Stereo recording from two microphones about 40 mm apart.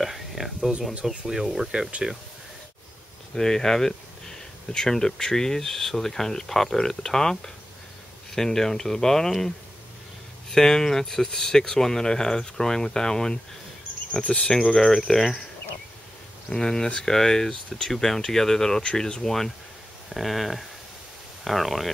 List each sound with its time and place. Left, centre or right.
0.0 s speech: centre
3.3 s speech: centre
10.5 s speech: centre
14.1 s insect: left
14.8 s speech: centre
16.4 s speech: centre